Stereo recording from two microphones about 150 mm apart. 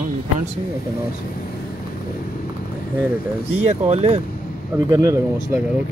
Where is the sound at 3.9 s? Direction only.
45° right (ahead or behind).